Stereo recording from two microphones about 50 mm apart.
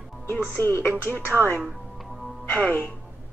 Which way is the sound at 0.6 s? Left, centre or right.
Left.